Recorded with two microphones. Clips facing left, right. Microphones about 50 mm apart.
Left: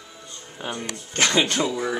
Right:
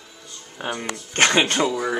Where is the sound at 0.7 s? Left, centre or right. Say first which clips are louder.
Right 3 dB; right.